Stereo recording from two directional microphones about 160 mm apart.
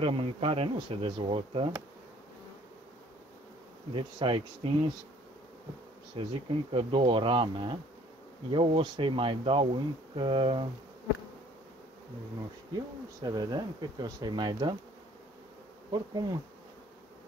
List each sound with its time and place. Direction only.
0.0 s speech: 35° right (ahead or behind)
3.9 s speech: 35° right (ahead or behind)
6.2 s speech: 35° right (ahead or behind)
12.7 s speech: 25° right (ahead or behind)
15.9 s speech: 25° right (ahead or behind)